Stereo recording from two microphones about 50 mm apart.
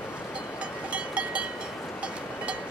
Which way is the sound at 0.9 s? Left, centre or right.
Right.